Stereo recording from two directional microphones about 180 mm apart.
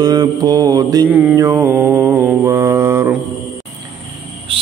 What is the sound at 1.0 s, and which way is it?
Mantra, 10° right (ahead or behind).